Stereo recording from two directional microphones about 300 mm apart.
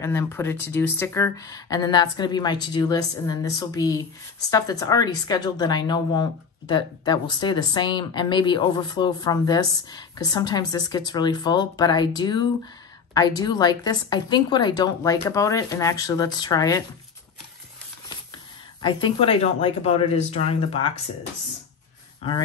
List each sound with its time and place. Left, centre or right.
0.0 s speech: centre
18.8 s speech: centre
22.2 s speech: centre